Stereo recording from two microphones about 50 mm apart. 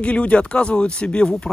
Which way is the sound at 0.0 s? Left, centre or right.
Left.